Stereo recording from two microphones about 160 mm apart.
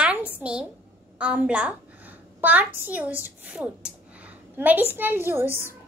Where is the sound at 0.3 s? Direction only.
5° right (ahead or behind).